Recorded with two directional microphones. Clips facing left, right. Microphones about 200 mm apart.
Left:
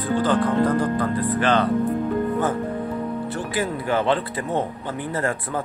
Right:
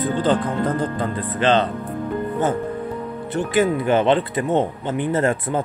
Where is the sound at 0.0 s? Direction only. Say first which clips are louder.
Right 1 dB; 20° right (ahead or behind).